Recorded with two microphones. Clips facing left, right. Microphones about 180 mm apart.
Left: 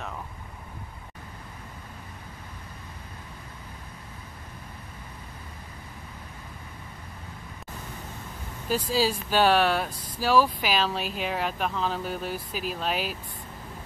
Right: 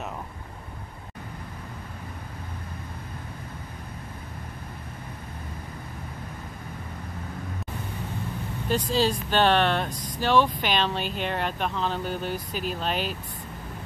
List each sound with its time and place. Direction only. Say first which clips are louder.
8.6 s speech: right 1 dB; 5° left (ahead or behind)